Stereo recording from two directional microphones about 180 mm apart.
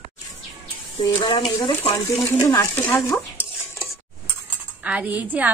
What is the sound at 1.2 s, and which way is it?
Speech, 25° left (ahead or behind).